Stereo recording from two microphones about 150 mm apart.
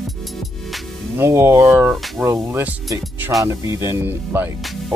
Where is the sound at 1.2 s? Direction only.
15° right (ahead or behind).